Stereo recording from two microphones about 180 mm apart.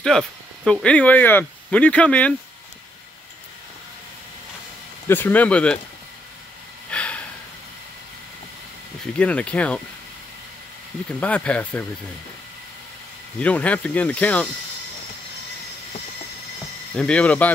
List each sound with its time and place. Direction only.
0.0 s speech: 5° left (ahead or behind)
5.0 s speech: 10° left (ahead or behind)
6.9 s a sound: 5° left (ahead or behind)
9.0 s speech: 5° left (ahead or behind)
11.1 s speech: 5° left (ahead or behind)
13.4 s speech: 5° left (ahead or behind)
16.9 s speech: 5° left (ahead or behind)